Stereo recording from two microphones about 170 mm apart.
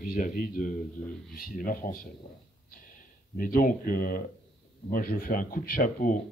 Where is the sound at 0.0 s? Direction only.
50° left (ahead or behind).